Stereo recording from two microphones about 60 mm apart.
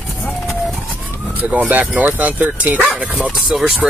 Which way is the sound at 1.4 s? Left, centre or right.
Right.